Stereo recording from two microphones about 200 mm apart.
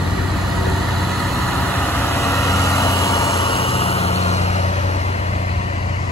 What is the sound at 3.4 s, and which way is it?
Vehicle, 30° left (ahead or behind).